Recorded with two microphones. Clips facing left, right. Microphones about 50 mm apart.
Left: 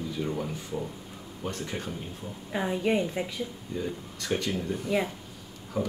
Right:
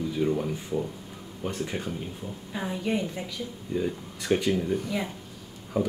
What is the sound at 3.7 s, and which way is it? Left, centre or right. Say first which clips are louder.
Speech: right 4 dB; centre.